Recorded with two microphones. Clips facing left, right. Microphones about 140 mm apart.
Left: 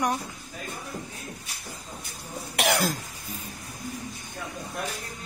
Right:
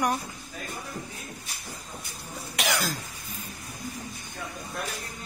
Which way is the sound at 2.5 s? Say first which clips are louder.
Left 4 dB; 60° left (ahead or behind).